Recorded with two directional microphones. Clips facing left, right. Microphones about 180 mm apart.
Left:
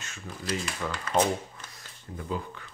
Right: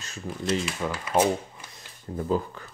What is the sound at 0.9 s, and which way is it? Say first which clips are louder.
Speech: right 2 dB; 10° right (ahead or behind).